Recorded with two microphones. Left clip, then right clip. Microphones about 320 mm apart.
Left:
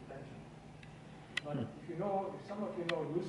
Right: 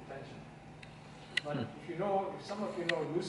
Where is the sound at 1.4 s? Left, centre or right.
Centre.